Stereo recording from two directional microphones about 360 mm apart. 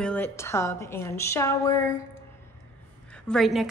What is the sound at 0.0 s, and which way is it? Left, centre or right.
A woman's voice, centre.